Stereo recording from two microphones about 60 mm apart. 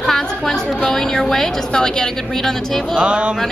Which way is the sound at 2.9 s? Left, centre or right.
Centre.